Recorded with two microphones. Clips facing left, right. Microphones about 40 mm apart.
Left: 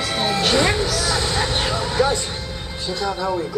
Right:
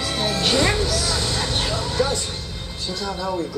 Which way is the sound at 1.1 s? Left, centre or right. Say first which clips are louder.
Left 3 dB; left.